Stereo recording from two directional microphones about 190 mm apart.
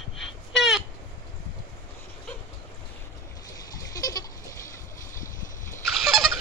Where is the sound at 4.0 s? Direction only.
20° left (ahead or behind).